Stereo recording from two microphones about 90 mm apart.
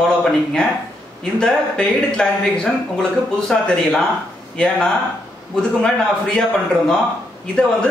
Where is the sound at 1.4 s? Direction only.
10° left (ahead or behind).